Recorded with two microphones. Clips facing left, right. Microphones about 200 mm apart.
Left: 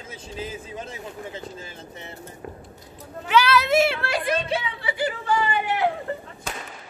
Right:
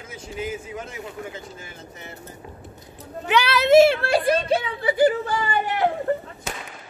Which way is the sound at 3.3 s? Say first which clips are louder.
Right 2 dB; 20° right (ahead or behind).